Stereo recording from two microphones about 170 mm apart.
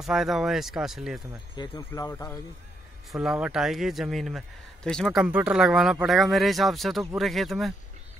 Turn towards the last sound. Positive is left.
turn(degrees=0)  # may be behind; listen again after turning